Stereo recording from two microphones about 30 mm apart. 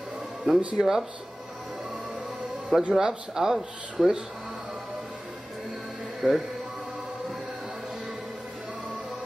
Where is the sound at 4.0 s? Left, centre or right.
Centre.